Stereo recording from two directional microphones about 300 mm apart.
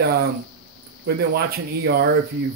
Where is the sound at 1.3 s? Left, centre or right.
Right.